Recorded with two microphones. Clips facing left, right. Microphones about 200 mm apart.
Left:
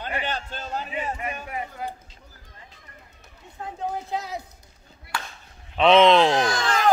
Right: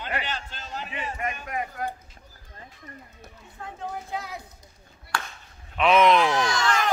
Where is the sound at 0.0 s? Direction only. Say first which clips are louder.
Left 2 dB; 45° left (ahead or behind).